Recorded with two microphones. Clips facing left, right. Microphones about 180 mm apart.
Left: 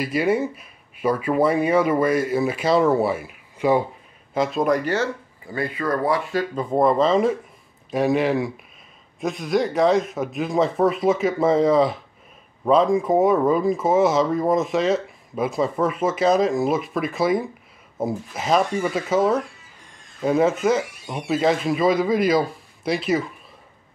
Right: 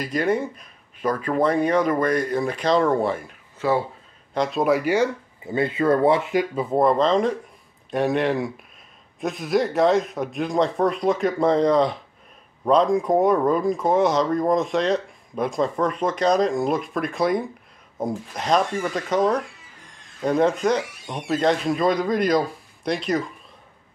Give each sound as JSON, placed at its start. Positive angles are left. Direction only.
{"t": 0.0, "sound": "speech", "side_deg": 5}
{"t": 4.3, "sound": "speech", "side_deg": 0}
{"t": 6.5, "sound": "speech", "side_deg": -5}